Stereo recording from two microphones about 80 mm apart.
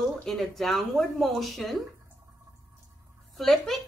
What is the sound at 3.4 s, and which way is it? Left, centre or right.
Speech, centre.